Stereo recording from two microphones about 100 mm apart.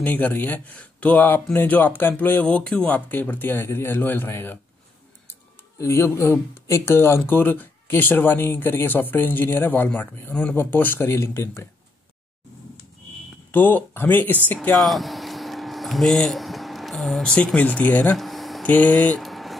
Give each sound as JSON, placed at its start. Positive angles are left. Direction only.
{"t": 0.0, "sound": "speech", "side_deg": 15}
{"t": 5.8, "sound": "speech", "side_deg": 25}
{"t": 13.5, "sound": "speech", "side_deg": 20}
{"t": 14.7, "sound": "speech", "side_deg": 0}
{"t": 18.1, "sound": "a sound", "side_deg": 0}
{"t": 18.6, "sound": "speech", "side_deg": 15}
{"t": 19.2, "sound": "a sound", "side_deg": 0}